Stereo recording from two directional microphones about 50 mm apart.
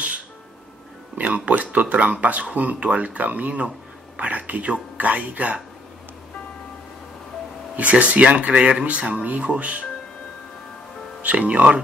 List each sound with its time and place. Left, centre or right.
1.1 s speech: right
7.7 s speech: right
11.2 s speech: right